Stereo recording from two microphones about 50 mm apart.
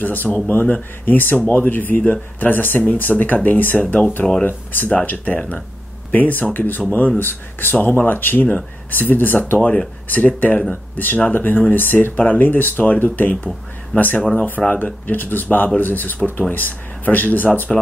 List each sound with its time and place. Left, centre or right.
0.0 s speech: left
9.6 s speech: left